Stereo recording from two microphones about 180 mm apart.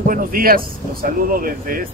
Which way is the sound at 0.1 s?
55° right (ahead or behind).